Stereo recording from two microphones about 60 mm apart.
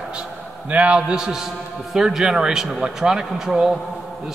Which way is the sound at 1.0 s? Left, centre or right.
Centre.